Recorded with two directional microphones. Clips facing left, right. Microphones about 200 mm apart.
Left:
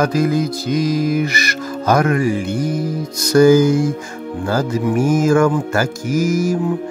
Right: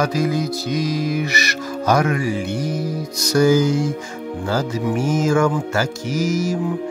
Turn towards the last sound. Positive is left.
turn(degrees=50)  # may be behind; listen again after turning